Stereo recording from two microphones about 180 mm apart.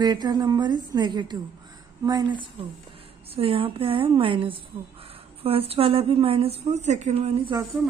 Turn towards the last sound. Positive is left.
turn(degrees=-35)  # may be behind; listen again after turning